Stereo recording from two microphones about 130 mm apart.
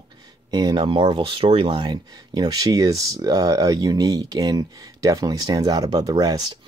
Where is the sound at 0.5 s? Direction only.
35° right (ahead or behind).